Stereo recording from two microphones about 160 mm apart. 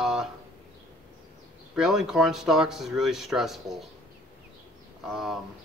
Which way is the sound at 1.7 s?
5° right (ahead or behind).